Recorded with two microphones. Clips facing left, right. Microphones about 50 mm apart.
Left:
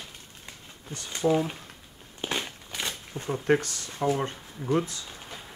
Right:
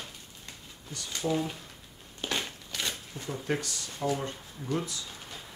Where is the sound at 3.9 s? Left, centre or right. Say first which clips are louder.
Left 5 dB; left.